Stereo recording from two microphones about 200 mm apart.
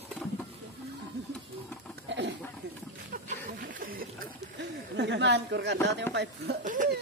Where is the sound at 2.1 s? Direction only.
60° right (ahead or behind).